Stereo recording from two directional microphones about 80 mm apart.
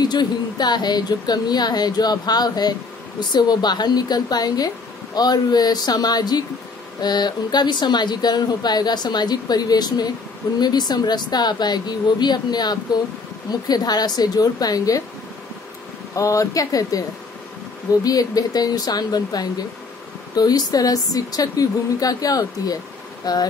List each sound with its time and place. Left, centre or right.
0.0 s speech: left
16.2 s a woman's voice: left
18.0 s a woman's voice: left